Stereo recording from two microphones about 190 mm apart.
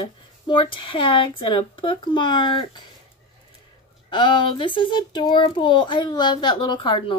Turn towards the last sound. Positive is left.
turn(degrees=25)  # may be behind; listen again after turning